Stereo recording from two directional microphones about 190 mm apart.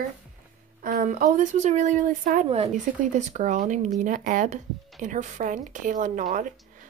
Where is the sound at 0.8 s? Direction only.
50° right (ahead or behind).